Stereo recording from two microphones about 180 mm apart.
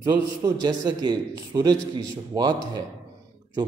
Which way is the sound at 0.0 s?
20° right (ahead or behind).